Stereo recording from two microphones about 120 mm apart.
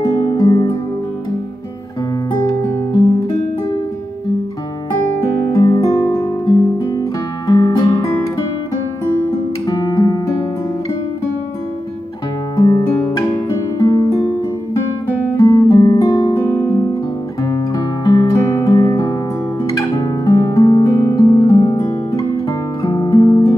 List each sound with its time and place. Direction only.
0.0 s music: 30° left (ahead or behind)
5.5 s music: 30° left (ahead or behind)
9.7 s guitar: 30° left (ahead or behind)
12.5 s music: 30° left (ahead or behind)
15.3 s guitar: 35° left (ahead or behind)
16.3 s music: 20° left (ahead or behind)
17.4 s guitar: 35° left (ahead or behind)
18.3 s music: 25° left (ahead or behind)
21.8 s guitar: 25° left (ahead or behind)